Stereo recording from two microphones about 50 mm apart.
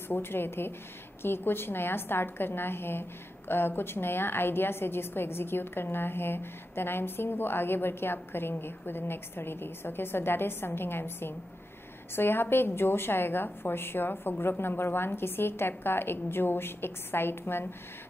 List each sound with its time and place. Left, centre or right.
0.1 s a woman's voice: left